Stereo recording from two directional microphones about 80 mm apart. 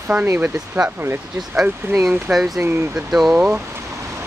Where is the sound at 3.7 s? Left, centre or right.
Right.